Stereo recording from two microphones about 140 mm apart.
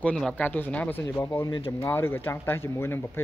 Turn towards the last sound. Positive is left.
turn(degrees=15)  # may be behind; listen again after turning